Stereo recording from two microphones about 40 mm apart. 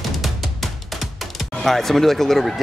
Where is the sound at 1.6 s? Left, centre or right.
Centre.